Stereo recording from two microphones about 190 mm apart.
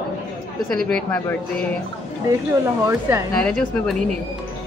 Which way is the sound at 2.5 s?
15° right (ahead or behind).